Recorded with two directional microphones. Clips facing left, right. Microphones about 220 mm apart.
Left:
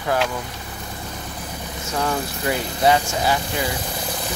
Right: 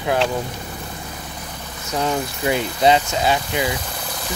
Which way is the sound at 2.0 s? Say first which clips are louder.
Right 2 dB; 20° right (ahead or behind).